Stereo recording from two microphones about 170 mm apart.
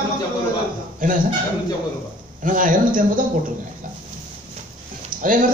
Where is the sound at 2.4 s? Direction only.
50° right (ahead or behind).